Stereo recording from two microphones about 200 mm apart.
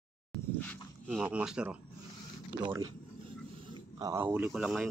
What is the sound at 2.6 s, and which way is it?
Speech, 20° right (ahead or behind).